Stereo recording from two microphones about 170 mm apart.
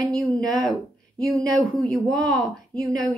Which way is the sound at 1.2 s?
5° left (ahead or behind).